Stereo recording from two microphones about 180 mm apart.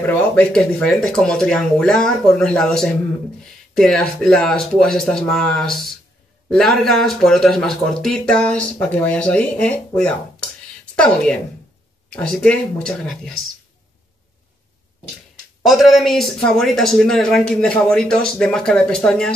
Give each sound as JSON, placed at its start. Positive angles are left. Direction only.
{"t": 0.0, "sound": "speech", "side_deg": 10}
{"t": 12.1, "sound": "speech", "side_deg": 5}
{"t": 15.6, "sound": "speech", "side_deg": 0}